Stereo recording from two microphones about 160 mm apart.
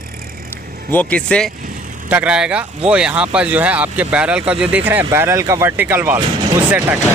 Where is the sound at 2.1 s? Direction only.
10° right (ahead or behind).